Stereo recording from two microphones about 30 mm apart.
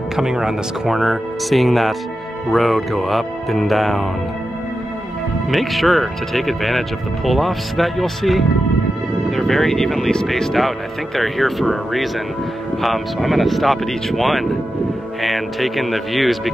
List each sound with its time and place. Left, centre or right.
0.1 s speech: centre
5.5 s speech: centre
11.1 s speech: centre